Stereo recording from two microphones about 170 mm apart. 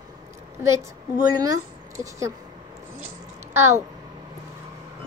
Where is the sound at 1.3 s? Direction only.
20° right (ahead or behind).